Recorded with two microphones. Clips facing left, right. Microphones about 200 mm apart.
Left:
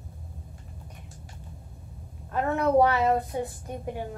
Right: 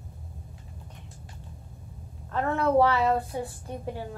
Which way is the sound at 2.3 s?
15° left (ahead or behind).